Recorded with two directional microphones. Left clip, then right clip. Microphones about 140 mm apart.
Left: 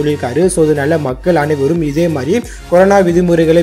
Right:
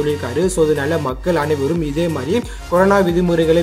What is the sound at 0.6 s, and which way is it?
Speech, 30° left (ahead or behind).